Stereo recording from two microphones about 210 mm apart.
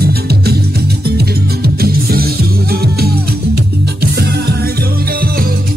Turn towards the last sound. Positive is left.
turn(degrees=-50)  # may be behind; listen again after turning